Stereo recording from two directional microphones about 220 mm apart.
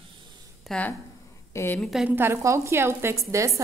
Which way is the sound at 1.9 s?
5° right (ahead or behind).